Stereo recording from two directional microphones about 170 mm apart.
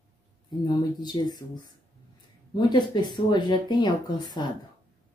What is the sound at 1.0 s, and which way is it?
Speech, 25° left (ahead or behind).